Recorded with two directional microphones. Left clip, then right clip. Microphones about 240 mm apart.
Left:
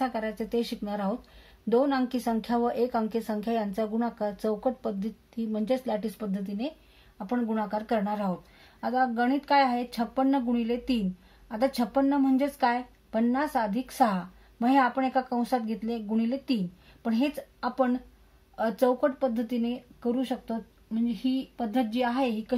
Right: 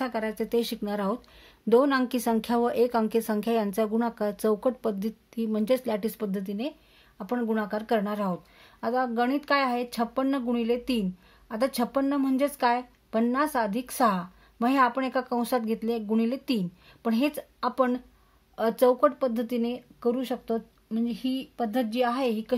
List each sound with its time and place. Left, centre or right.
0.0 s a woman's voice: right